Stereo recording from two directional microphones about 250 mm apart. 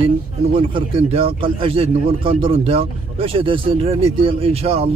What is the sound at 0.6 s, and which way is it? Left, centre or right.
Speech, right.